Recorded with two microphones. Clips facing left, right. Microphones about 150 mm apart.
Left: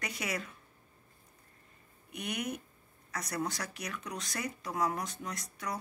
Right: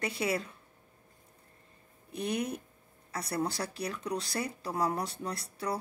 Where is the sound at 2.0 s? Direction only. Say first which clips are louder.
Right 4 dB; 30° right (ahead or behind).